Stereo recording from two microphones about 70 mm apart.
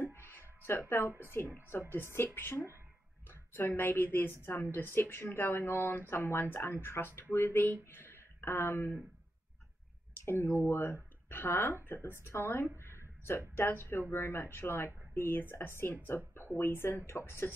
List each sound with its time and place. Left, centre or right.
0.1 s music: left
1.3 s speech: left
3.7 s speech: left
10.2 s speech: left